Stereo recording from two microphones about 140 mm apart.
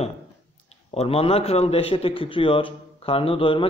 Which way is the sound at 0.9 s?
45° left (ahead or behind).